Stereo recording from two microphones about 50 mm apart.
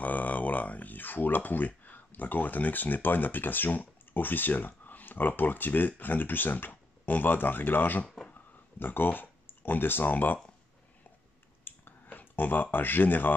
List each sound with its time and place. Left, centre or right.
0.0 s speech: left
8.3 s a sound: left
11.6 s clicking: left
12.7 s speech: left